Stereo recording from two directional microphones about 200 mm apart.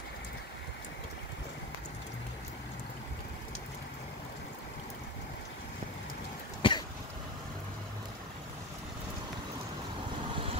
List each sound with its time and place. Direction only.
6.6 s cough: 25° left (ahead or behind)